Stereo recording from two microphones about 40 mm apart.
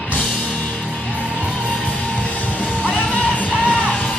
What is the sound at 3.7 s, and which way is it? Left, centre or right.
Music, left.